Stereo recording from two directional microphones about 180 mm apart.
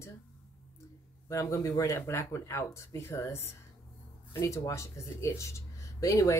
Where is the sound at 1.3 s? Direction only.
15° left (ahead or behind).